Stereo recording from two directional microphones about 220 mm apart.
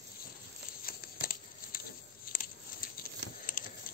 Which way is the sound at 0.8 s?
40° left (ahead or behind).